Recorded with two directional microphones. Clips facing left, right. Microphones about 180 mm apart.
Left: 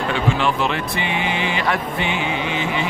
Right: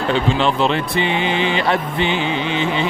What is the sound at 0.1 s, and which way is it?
A man's voice, 30° right (ahead or behind).